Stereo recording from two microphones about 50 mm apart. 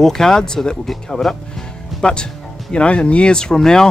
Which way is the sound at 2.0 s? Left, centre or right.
Centre.